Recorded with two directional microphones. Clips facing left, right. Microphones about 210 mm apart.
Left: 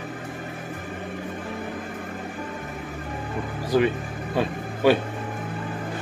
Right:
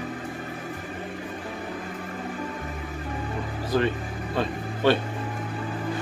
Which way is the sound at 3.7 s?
10° left (ahead or behind).